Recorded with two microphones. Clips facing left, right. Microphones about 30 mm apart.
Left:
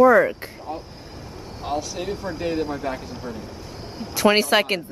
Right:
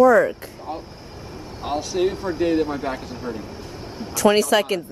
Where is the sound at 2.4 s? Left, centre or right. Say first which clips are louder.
Right 5 dB; right.